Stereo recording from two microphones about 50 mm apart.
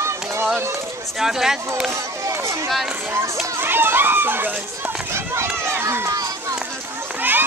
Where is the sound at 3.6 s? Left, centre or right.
Right.